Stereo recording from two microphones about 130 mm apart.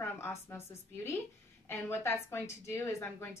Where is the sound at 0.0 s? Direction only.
20° left (ahead or behind).